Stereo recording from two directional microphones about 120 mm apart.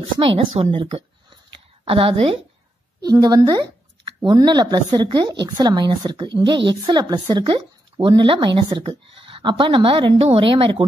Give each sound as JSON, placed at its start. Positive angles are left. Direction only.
{"t": 0.2, "sound": "a woman's voice", "side_deg": -45}
{"t": 3.0, "sound": "a woman's voice", "side_deg": -35}